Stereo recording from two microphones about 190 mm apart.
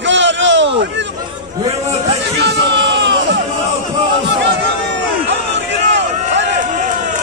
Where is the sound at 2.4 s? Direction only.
65° right (ahead or behind).